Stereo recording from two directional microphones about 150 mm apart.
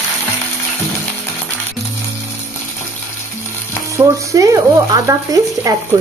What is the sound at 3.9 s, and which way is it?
Frying, 20° right (ahead or behind).